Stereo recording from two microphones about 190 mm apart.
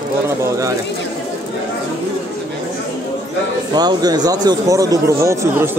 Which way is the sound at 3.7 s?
20° right (ahead or behind).